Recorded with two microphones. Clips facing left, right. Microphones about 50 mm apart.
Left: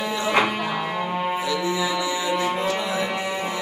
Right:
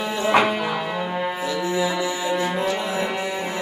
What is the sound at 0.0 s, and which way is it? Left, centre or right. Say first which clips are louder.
Music: right 3 dB; right.